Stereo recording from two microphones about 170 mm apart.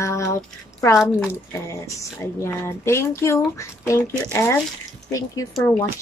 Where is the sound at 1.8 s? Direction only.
15° left (ahead or behind).